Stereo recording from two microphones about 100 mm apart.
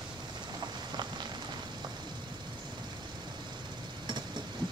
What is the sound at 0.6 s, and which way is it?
Clip-clop, 45° right (ahead or behind).